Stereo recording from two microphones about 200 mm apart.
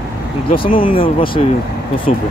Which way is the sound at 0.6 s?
25° left (ahead or behind).